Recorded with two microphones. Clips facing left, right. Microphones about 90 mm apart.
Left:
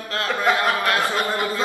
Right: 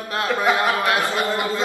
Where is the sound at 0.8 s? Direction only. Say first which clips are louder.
Right 1 dB; 20° right (ahead or behind).